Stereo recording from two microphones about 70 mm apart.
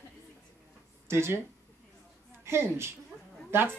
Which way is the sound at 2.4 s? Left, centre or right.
Right.